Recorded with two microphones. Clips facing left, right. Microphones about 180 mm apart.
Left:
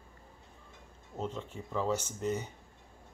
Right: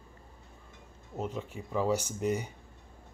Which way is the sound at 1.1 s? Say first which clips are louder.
Right 2 dB; 10° right (ahead or behind).